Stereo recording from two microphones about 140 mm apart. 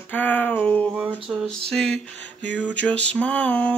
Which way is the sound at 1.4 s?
5° left (ahead or behind).